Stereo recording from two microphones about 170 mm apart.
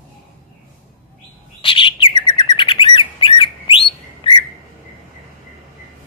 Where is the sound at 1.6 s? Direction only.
30° left (ahead or behind).